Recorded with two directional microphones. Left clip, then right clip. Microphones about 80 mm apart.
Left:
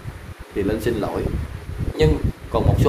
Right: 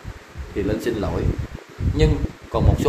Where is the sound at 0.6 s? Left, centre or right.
Centre.